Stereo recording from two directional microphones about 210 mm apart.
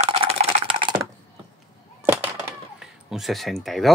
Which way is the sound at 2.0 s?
10° right (ahead or behind).